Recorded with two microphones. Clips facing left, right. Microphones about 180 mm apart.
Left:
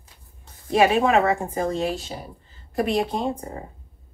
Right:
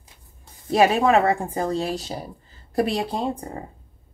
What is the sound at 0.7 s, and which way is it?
A woman's voice, 40° right (ahead or behind).